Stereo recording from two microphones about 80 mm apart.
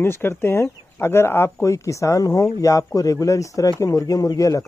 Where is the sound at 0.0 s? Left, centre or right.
Left.